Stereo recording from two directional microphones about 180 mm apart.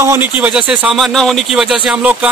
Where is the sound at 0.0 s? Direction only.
10° right (ahead or behind).